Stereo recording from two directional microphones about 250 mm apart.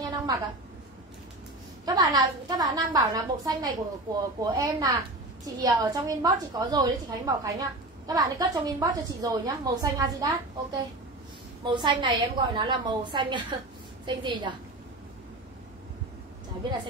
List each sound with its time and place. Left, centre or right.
0.0 s a sound: centre
1.9 s a woman's voice: centre
11.6 s a woman's voice: centre
16.6 s a woman's voice: centre